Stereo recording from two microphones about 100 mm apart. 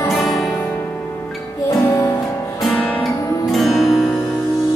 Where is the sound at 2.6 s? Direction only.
10° left (ahead or behind).